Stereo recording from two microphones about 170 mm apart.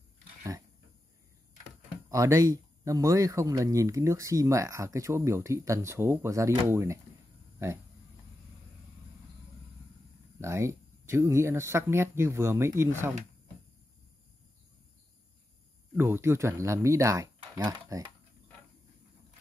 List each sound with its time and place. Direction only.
2.0 s speech: 20° right (ahead or behind)
10.4 s speech: 15° right (ahead or behind)
16.0 s speech: 15° right (ahead or behind)